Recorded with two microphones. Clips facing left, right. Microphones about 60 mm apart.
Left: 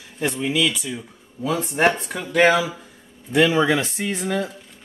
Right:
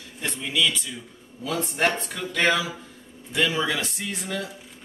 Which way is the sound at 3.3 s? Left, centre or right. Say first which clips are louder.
Left 7 dB; left.